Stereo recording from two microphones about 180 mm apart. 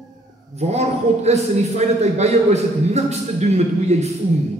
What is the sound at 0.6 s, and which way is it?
A man's voice, 35° right (ahead or behind).